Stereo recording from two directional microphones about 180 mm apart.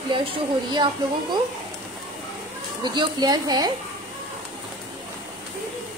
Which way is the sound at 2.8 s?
25° right (ahead or behind).